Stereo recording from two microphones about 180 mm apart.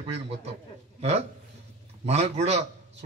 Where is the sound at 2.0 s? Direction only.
35° right (ahead or behind).